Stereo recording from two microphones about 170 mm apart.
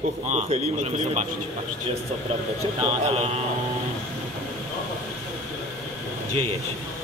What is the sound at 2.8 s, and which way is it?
Speech, 35° right (ahead or behind).